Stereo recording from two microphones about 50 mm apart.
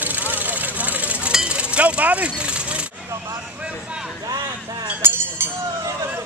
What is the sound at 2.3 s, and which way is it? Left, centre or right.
Vehicle, right.